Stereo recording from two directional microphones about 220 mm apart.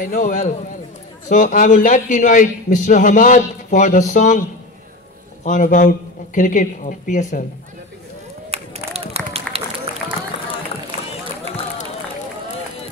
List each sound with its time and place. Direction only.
0.0 s a man's voice: 40° left (ahead or behind)
5.4 s a man's voice: 35° left (ahead or behind)
8.5 s a sound: 30° right (ahead or behind)